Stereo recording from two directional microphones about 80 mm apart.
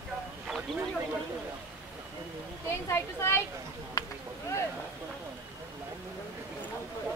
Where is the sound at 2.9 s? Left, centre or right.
Left.